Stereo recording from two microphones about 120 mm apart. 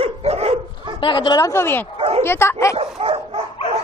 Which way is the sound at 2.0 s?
55° right (ahead or behind).